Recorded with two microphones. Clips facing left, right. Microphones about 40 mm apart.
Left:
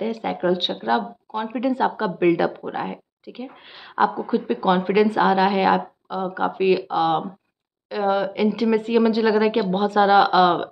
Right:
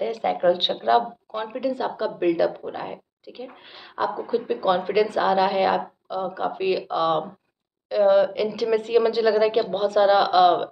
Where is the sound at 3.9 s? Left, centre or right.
Centre.